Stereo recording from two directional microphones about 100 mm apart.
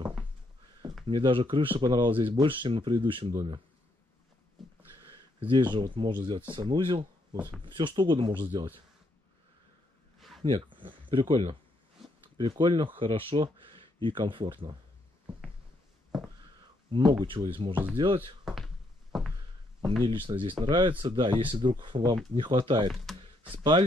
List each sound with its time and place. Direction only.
1.0 s speech: 55° right (ahead or behind)
5.4 s speech: 50° right (ahead or behind)
10.5 s speech: 55° right (ahead or behind)
16.9 s speech: 45° right (ahead or behind)
18.4 s a sound: centre (ahead or behind)
20.1 s speech: 60° right (ahead or behind)
23.1 s computer keyboard: 5° left (ahead or behind)
23.4 s speech: 60° right (ahead or behind)